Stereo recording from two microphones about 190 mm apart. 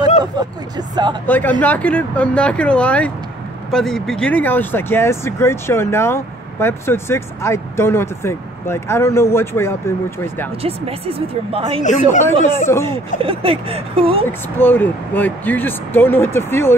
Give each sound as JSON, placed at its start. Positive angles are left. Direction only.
{"t": 0.2, "sound": "speech", "side_deg": -20}
{"t": 1.2, "sound": "speech", "side_deg": 10}
{"t": 10.6, "sound": "speech", "side_deg": -30}
{"t": 12.4, "sound": "speech", "side_deg": 15}
{"t": 13.2, "sound": "speech", "side_deg": -30}
{"t": 14.2, "sound": "speech", "side_deg": 10}